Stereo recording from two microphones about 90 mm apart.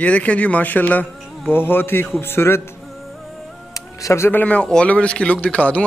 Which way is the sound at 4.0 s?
35° left (ahead or behind).